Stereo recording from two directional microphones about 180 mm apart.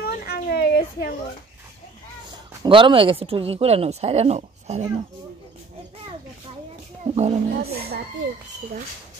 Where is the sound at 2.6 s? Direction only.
30° right (ahead or behind).